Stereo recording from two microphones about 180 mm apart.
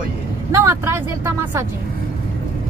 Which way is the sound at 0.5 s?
15° right (ahead or behind).